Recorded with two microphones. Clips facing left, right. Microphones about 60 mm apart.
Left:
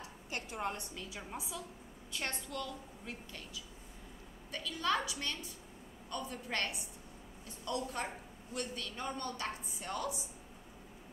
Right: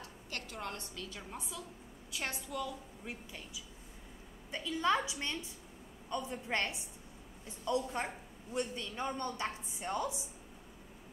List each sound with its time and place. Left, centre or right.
0.0 s a woman's voice: left
2.1 s a woman's voice: centre; by 10.1 s right